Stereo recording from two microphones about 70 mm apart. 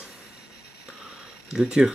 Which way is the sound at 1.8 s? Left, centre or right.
Centre.